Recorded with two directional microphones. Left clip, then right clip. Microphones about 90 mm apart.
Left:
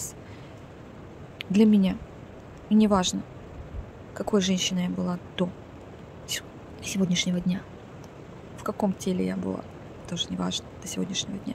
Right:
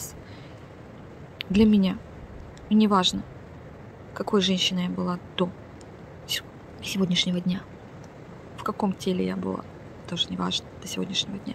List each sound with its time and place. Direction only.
1.4 s speech: 30° left (ahead or behind)